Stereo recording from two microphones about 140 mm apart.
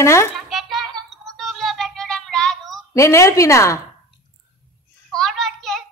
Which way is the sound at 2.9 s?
20° left (ahead or behind).